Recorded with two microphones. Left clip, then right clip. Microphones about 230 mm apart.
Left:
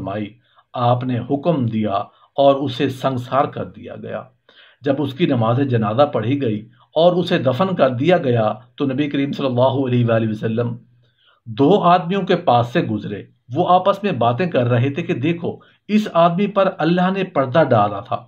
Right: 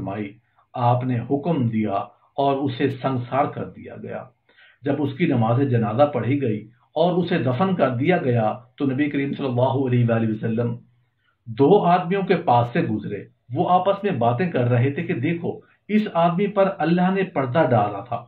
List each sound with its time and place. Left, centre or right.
0.7 s a man's voice: left